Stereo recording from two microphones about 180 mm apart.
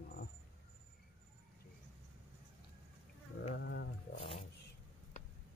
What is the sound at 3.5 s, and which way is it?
Speech, 70° left (ahead or behind).